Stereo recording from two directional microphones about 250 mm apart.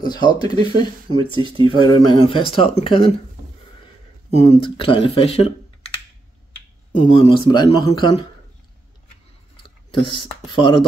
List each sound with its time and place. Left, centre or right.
0.0 s speech: centre
1.3 s speech: centre
1.9 s speech: left
4.3 s speech: left
6.9 s speech: left
9.6 s speech: centre